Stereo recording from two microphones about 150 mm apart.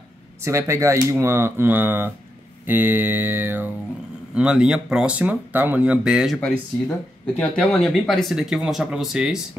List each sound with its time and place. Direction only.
0.4 s speech: 20° right (ahead or behind); by 9.4 s 5° right (ahead or behind)